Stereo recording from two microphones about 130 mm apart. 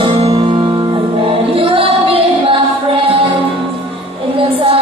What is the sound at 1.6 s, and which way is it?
Music, 45° right (ahead or behind).